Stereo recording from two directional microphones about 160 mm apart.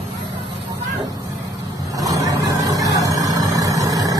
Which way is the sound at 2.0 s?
20° right (ahead or behind).